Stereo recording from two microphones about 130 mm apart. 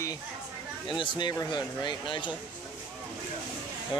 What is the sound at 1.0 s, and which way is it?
Speech, 35° left (ahead or behind).